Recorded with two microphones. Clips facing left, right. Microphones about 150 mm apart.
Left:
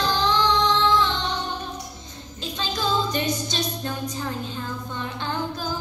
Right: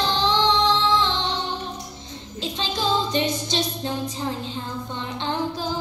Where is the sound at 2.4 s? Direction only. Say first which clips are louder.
Right 1 dB; 25° right (ahead or behind).